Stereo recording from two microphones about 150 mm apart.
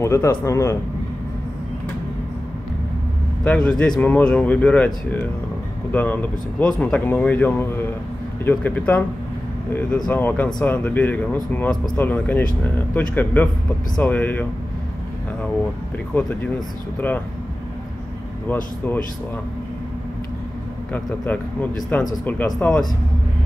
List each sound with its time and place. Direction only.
0.0 s speech: 15° left (ahead or behind)
3.4 s a man's voice: 5° left (ahead or behind)
16.2 s speech: 10° left (ahead or behind)
20.9 s a man's voice: 10° left (ahead or behind)